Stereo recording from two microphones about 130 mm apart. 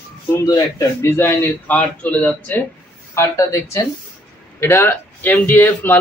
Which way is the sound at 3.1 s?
20° left (ahead or behind).